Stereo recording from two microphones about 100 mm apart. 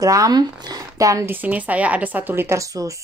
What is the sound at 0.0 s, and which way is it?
Speech, 35° right (ahead or behind).